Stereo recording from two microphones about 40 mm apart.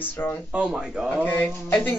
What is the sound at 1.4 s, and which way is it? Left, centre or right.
Speech, left.